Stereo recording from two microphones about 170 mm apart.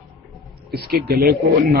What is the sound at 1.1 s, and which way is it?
Speech, 65° right (ahead or behind).